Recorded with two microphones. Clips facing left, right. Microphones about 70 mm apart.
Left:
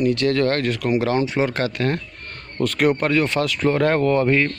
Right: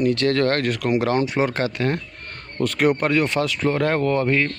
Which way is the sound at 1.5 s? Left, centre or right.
Right.